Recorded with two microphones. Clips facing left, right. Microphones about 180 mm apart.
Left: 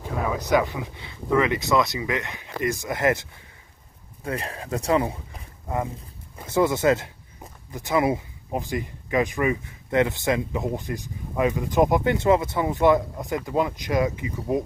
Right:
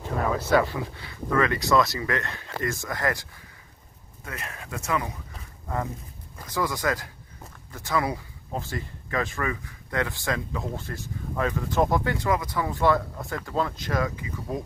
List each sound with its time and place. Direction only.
0.4 s speech: 15° left (ahead or behind)
4.2 s speech: 30° left (ahead or behind)
6.3 s speech: 25° left (ahead or behind)